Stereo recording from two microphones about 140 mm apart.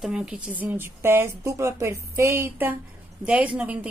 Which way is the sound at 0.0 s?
5° right (ahead or behind).